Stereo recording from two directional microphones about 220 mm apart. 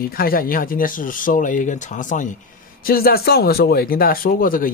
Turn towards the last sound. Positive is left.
turn(degrees=40)  # may be behind; listen again after turning